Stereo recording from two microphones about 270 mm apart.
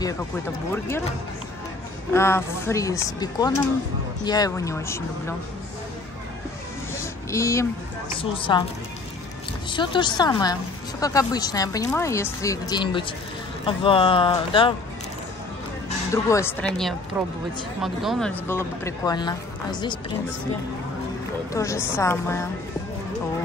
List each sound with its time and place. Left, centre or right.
0.7 s a woman's voice: centre
2.1 s a woman's voice: centre
7.0 s vehicle: centre
8.2 s speech: centre
9.7 s a woman's voice: centre
16.1 s a woman's voice: centre
21.5 s a woman's voice: centre